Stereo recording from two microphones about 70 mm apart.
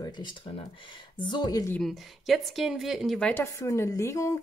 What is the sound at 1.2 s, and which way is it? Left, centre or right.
Speech, left.